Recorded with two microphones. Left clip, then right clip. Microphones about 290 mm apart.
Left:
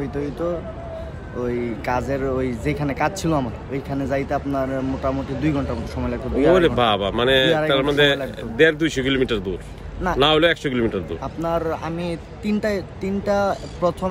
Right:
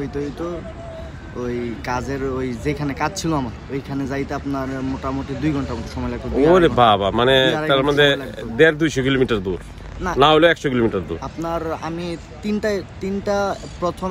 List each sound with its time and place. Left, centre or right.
1.4 s speech: centre
6.5 s speech: centre
11.4 s speech: centre